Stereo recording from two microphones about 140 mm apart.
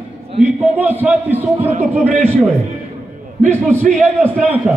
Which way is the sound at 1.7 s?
65° right (ahead or behind).